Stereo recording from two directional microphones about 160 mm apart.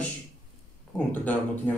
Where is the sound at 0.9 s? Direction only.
10° left (ahead or behind).